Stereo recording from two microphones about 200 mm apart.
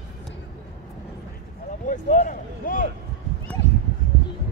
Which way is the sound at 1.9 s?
40° left (ahead or behind).